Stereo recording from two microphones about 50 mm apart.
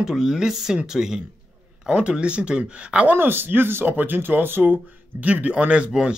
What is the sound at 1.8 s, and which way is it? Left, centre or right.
Speech, right.